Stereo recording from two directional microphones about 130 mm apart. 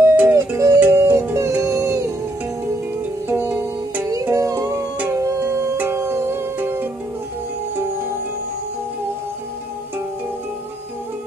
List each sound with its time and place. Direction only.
0.0 s music: 15° right (ahead or behind)
3.3 s music: 15° right (ahead or behind)
4.1 s music: 25° right (ahead or behind)